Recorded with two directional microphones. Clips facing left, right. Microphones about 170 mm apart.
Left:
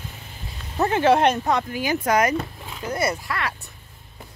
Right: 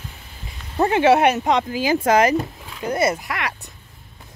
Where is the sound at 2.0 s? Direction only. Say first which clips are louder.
Right 4 dB; 25° right (ahead or behind).